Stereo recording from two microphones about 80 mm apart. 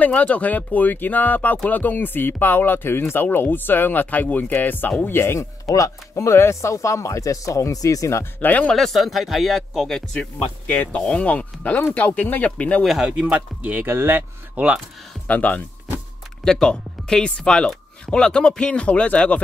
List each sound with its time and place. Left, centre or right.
0.0 s speech: centre; by 8.5 s left
8.5 s speech: centre
8.7 s speech: centre
10.7 s speech: centre
12.8 s speech: centre
13.2 s speech: centre
15.2 s speech: centre
16.4 s speech: centre